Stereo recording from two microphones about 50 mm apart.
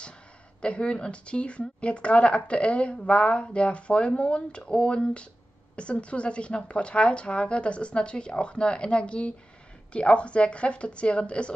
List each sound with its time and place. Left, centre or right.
0.6 s a woman's voice: left